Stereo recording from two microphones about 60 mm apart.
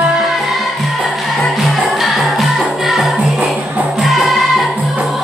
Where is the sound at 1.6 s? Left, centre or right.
Centre.